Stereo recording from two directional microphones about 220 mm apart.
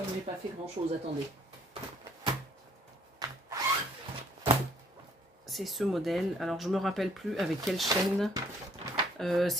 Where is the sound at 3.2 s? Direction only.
15° right (ahead or behind).